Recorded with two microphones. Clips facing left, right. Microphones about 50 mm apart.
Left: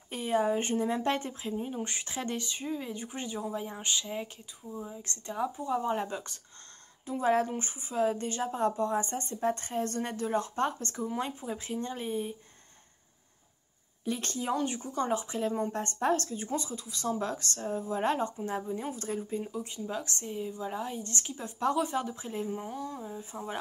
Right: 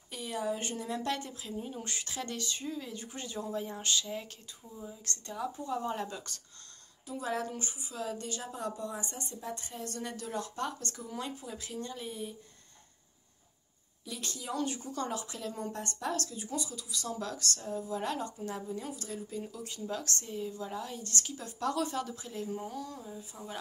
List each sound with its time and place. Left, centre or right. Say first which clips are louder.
0.1 s speech: left 7 dB; left
7.1 s a woman's voice: left 8 dB; left
14.0 s a woman's voice: left 8 dB; left
14.6 s a woman's voice: left 3 dB; left